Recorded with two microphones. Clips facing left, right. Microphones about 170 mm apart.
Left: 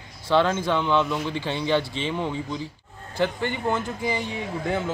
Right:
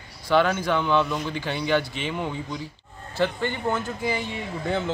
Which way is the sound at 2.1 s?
5° right (ahead or behind).